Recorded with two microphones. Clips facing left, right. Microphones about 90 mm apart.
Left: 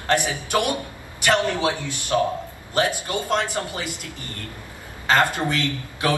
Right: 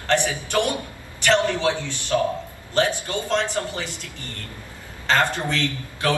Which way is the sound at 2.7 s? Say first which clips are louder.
Right 1 dB; 15° left (ahead or behind).